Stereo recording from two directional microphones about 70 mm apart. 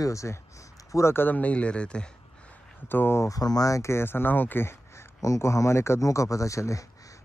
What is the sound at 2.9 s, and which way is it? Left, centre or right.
Speech, left.